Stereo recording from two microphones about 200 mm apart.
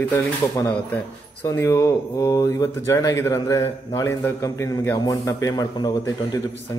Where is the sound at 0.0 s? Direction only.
10° left (ahead or behind).